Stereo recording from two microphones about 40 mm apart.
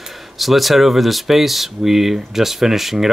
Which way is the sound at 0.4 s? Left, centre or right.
Centre.